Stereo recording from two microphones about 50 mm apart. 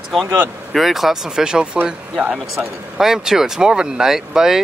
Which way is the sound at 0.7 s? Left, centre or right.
Centre.